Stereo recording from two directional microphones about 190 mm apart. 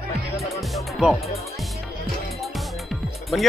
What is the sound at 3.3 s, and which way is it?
Speech, centre (ahead or behind).